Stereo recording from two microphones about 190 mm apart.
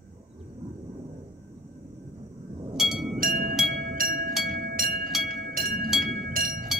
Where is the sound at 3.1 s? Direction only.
50° right (ahead or behind).